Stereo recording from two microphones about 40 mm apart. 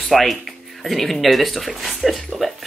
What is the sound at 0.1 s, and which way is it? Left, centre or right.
Speech, centre.